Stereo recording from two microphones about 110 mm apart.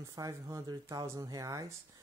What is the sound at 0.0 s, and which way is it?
Speech, 30° right (ahead or behind).